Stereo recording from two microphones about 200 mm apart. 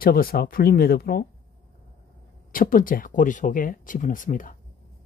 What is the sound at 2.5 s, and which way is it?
Speech, 45° left (ahead or behind).